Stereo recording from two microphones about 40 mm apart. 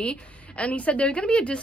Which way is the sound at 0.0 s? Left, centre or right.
Left.